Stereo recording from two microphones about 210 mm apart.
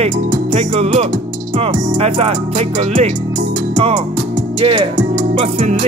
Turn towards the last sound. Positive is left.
turn(degrees=-30)  # may be behind; listen again after turning